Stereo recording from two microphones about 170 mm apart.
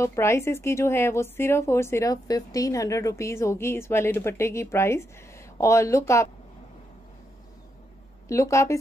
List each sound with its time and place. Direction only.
0.0 s speech: 15° left (ahead or behind)
8.3 s speech: 15° left (ahead or behind)